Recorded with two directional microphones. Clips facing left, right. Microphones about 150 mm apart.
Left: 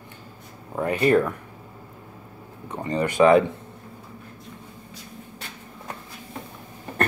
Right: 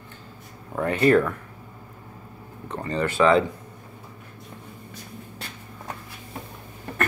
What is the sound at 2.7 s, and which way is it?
Speech, 15° left (ahead or behind).